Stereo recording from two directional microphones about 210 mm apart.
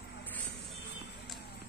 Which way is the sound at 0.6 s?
55° left (ahead or behind).